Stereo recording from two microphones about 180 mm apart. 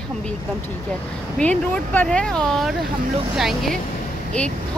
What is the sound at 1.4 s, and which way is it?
Speech, 10° left (ahead or behind).